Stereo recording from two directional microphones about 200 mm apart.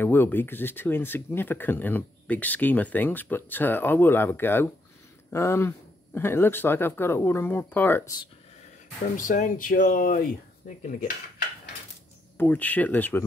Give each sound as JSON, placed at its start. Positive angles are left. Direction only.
{"t": 0.0, "sound": "speech", "side_deg": 10}
{"t": 9.1, "sound": "speech", "side_deg": 40}
{"t": 12.4, "sound": "speech", "side_deg": 10}